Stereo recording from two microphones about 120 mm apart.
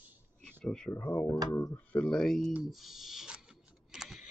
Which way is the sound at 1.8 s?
10° left (ahead or behind).